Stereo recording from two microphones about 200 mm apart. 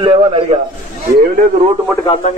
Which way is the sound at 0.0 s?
25° right (ahead or behind).